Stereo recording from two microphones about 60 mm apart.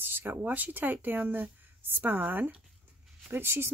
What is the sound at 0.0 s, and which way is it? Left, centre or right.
Speech, right.